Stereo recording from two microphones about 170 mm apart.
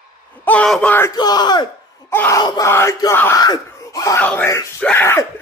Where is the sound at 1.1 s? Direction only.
25° left (ahead or behind).